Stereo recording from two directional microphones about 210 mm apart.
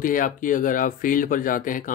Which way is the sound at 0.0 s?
40° left (ahead or behind).